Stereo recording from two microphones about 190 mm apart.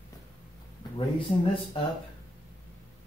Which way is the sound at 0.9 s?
30° left (ahead or behind).